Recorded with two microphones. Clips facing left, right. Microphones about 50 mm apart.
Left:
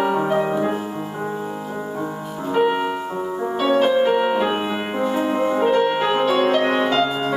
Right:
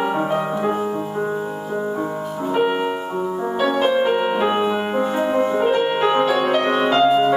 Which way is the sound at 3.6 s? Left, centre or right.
Centre.